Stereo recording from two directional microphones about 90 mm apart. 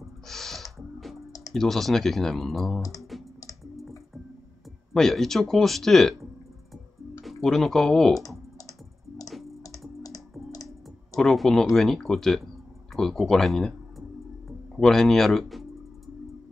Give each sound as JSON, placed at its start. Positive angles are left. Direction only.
{"t": 0.3, "sound": "music", "side_deg": 5}
{"t": 1.5, "sound": "speech", "side_deg": 5}
{"t": 3.1, "sound": "computer keyboard", "side_deg": 0}
{"t": 4.9, "sound": "speech", "side_deg": 5}
{"t": 6.7, "sound": "music", "side_deg": 0}
{"t": 7.4, "sound": "speech", "side_deg": 5}
{"t": 9.3, "sound": "music", "side_deg": 0}
{"t": 9.6, "sound": "typing", "side_deg": 40}
{"t": 11.1, "sound": "speech", "side_deg": 5}